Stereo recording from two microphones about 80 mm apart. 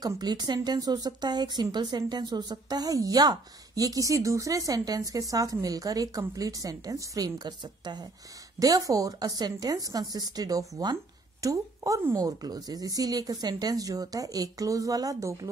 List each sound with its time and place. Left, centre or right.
0.2 s a woman's voice: right
8.5 s a woman's voice: right
11.4 s a woman's voice: right